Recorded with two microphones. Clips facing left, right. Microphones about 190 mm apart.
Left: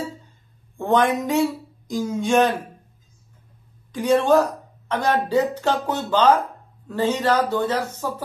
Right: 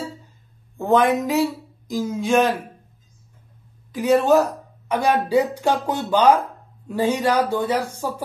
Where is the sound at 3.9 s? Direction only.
5° right (ahead or behind).